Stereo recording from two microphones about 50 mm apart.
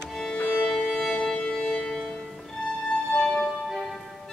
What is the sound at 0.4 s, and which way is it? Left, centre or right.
Music, left.